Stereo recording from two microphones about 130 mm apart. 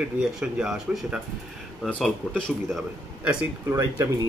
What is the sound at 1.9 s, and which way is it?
Speech, 5° left (ahead or behind).